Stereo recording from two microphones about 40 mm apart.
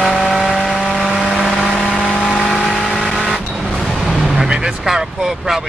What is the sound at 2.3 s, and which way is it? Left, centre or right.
Vehicle, centre.